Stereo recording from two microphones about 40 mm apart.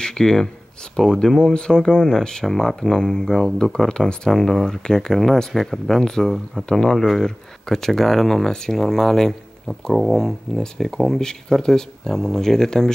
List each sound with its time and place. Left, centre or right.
0.0 s speech: centre
4.3 s speech: centre